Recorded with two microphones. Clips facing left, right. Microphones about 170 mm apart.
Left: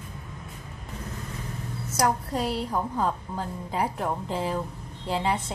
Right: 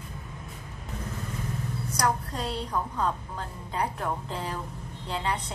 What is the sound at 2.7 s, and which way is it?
A woman's voice, 25° left (ahead or behind).